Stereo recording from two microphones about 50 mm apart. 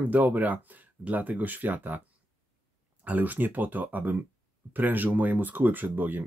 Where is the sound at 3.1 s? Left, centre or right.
Right.